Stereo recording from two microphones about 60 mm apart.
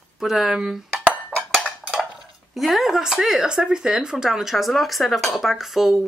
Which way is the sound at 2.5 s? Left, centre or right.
Centre.